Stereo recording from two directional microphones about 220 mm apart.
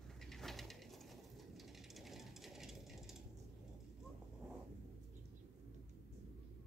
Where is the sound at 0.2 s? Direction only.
Centre (ahead or behind).